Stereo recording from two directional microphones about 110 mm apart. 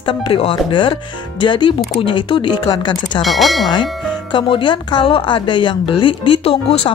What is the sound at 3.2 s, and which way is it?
Speech, centre (ahead or behind).